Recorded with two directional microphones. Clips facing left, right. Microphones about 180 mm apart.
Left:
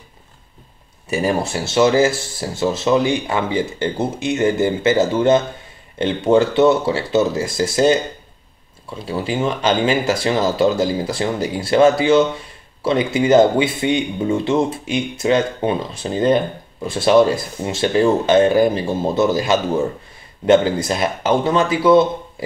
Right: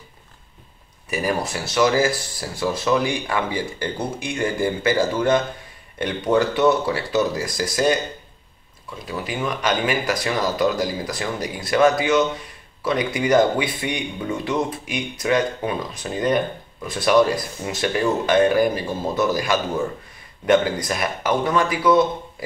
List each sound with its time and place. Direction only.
1.1 s speech: 25° left (ahead or behind)